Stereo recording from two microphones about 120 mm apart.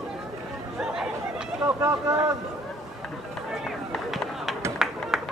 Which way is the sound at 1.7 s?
20° right (ahead or behind).